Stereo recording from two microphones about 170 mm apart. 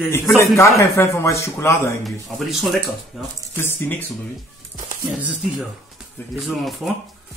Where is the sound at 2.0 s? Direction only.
Centre (ahead or behind).